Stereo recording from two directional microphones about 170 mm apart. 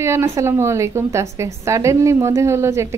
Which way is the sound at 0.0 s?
15° right (ahead or behind).